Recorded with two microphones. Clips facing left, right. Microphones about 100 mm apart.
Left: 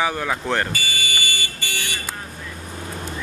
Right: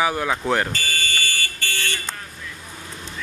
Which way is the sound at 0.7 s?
10° left (ahead or behind).